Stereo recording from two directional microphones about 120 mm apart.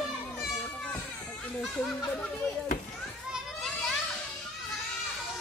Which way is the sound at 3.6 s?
Centre (ahead or behind).